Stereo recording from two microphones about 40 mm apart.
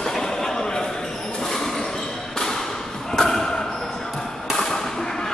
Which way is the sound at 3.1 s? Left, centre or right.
Centre.